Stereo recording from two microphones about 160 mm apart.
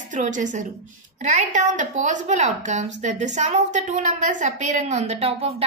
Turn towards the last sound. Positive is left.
turn(degrees=-40)  # may be behind; listen again after turning